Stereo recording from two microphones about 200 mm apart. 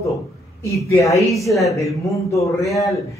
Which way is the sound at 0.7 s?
15° left (ahead or behind).